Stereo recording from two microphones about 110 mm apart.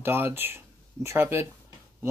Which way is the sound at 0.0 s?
20° right (ahead or behind).